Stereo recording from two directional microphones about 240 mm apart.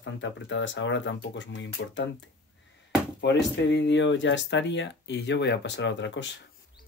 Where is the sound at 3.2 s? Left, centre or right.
Left.